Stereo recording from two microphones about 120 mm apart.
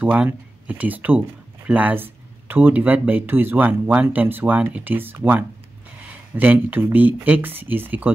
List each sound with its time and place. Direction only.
0.0 s speech: 10° right (ahead or behind)